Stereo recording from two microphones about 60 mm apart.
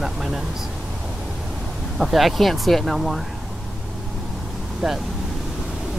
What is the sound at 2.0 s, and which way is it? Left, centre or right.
Speech, centre.